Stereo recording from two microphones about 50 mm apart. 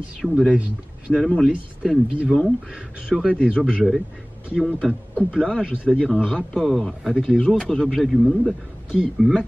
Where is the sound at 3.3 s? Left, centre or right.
Right.